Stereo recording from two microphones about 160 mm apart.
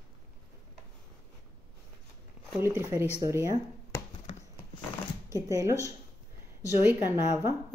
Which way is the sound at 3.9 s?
20° left (ahead or behind).